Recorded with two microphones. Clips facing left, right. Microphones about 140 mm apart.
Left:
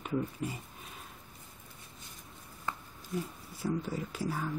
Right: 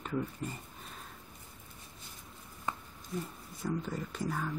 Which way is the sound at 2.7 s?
15° right (ahead or behind).